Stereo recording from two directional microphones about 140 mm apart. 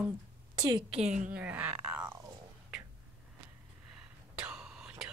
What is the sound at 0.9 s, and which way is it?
Speech, 50° right (ahead or behind).